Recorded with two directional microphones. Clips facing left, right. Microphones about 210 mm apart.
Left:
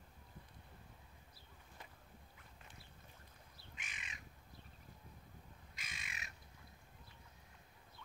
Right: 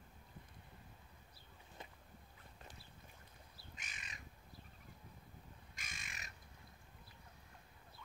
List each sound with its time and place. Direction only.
3.7 s crow: 40° right (ahead or behind)
5.8 s bird: 45° right (ahead or behind)